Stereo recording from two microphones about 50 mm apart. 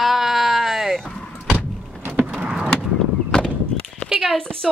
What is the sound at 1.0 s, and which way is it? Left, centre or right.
Door, centre.